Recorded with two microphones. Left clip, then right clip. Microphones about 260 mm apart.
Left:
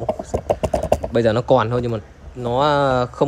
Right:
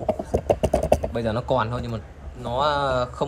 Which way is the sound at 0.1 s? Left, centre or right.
Right.